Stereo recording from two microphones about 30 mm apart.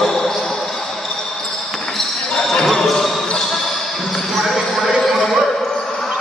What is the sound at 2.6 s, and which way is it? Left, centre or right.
Basketball bounce, centre.